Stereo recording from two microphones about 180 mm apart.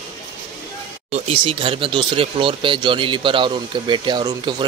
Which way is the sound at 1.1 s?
30° right (ahead or behind).